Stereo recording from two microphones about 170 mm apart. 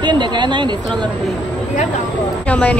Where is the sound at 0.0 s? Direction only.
25° right (ahead or behind).